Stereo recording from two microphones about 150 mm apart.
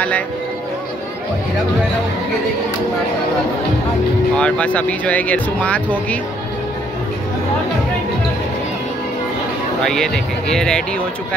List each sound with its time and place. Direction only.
4.4 s speech: 10° left (ahead or behind)
9.8 s speech: 5° left (ahead or behind)